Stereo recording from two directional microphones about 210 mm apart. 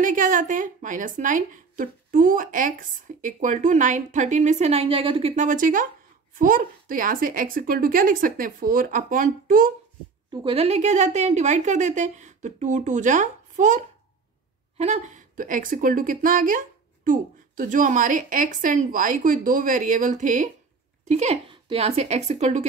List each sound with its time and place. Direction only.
0.0 s a woman's voice: 40° right (ahead or behind)
10.3 s a woman's voice: 25° right (ahead or behind)